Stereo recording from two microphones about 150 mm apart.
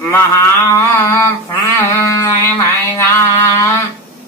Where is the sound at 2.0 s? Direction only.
20° left (ahead or behind).